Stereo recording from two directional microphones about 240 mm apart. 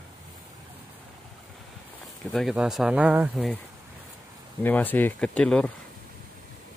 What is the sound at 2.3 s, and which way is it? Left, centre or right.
Speech, centre.